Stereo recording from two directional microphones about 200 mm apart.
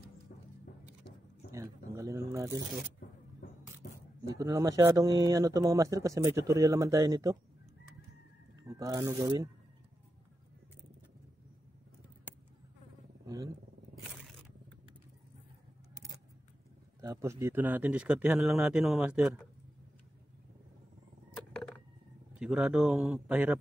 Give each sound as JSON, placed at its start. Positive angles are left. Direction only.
{"t": 0.3, "sound": "music", "side_deg": 50}
{"t": 1.5, "sound": "a sound", "side_deg": -15}
{"t": 3.8, "sound": "shuffling cards", "side_deg": 55}
{"t": 4.4, "sound": "speech", "side_deg": -15}
{"t": 8.6, "sound": "speech", "side_deg": -15}
{"t": 13.3, "sound": "speech", "side_deg": -15}
{"t": 17.0, "sound": "speech", "side_deg": -15}
{"t": 21.5, "sound": "a sound", "side_deg": 5}
{"t": 22.4, "sound": "speech", "side_deg": -5}